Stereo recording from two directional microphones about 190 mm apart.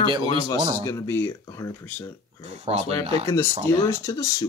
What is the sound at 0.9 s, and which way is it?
Speech, 15° left (ahead or behind).